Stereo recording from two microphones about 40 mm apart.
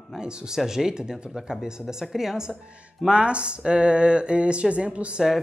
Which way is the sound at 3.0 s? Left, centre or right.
Right.